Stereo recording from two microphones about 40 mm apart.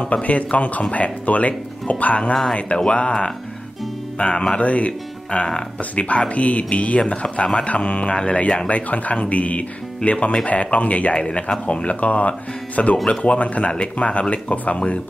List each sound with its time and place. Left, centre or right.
0.1 s speech: left
2.9 s music: left
4.6 s speech: left
7.5 s music: left
8.3 s speech: left
11.1 s music: left
11.6 s speech: left